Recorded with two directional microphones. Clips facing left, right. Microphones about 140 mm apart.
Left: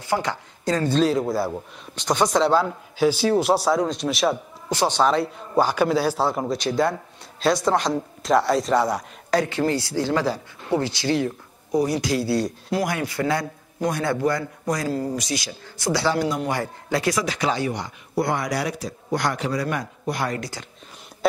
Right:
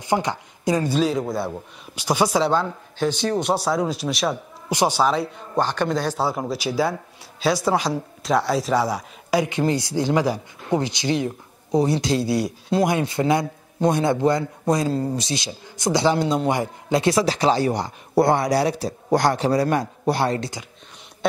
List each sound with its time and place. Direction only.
0.0 s speech: 20° right (ahead or behind)
1.0 s speech: centre (ahead or behind)
4.6 s speech: 10° right (ahead or behind)
9.4 s a man's voice: 20° right (ahead or behind)